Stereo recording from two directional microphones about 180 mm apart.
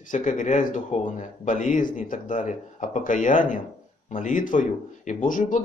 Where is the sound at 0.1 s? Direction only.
45° left (ahead or behind).